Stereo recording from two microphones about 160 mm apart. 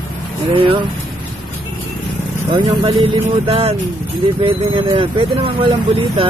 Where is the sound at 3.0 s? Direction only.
35° right (ahead or behind).